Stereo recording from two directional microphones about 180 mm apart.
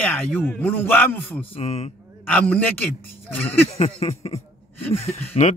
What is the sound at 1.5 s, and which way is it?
Speech, 35° left (ahead or behind).